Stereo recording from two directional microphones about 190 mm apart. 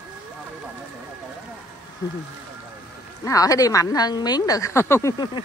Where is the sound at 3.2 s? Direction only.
20° left (ahead or behind).